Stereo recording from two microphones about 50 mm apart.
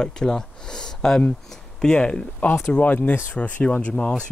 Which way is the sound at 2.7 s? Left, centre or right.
Left.